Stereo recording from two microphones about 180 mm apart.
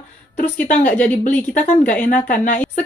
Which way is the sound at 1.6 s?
45° left (ahead or behind).